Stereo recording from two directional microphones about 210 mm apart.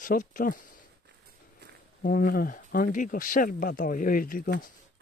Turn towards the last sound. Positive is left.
turn(degrees=40)  # may be behind; listen again after turning